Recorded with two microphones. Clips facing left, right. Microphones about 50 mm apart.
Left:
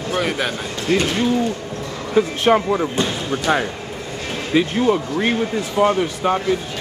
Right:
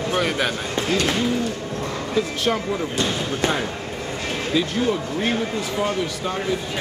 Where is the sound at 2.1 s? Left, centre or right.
Left.